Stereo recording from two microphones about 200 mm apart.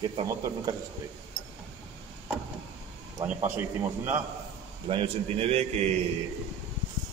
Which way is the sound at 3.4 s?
10° right (ahead or behind).